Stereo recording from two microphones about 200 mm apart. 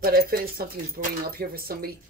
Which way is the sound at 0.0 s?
50° right (ahead or behind).